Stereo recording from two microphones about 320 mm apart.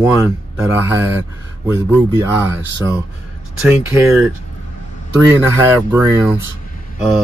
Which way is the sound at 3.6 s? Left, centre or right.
Centre.